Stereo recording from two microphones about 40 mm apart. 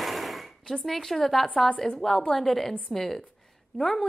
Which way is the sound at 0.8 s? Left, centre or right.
Centre.